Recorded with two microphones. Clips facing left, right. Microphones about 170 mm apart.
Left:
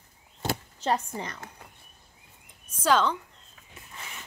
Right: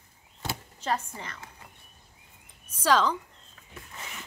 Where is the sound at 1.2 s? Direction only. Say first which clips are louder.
Left 5 dB; 40° left (ahead or behind).